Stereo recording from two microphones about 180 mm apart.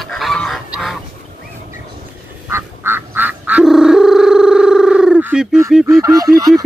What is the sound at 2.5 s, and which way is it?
Quack, 15° right (ahead or behind).